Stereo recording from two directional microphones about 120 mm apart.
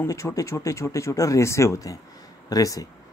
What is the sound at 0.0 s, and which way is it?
A man's voice, 25° left (ahead or behind).